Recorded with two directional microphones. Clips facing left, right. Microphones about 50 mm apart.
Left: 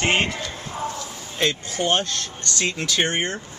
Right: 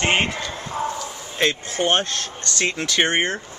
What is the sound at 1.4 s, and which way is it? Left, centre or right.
Speech, right.